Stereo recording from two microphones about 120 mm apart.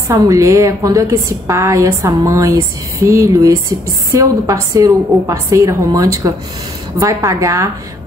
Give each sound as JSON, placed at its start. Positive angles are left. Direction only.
{"t": 0.1, "sound": "a woman's voice", "side_deg": -25}